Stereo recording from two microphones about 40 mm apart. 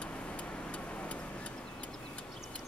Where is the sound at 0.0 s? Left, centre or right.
Left.